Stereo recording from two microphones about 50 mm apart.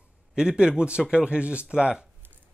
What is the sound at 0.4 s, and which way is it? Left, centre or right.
Speech, centre.